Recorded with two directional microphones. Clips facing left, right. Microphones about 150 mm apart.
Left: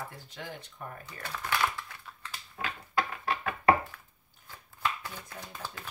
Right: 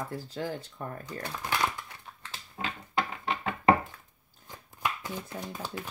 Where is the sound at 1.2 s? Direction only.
20° right (ahead or behind).